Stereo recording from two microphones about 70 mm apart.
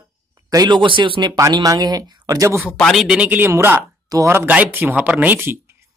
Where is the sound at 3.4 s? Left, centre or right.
Right.